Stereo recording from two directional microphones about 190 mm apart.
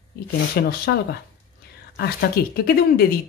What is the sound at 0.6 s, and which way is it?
Speech, 60° left (ahead or behind).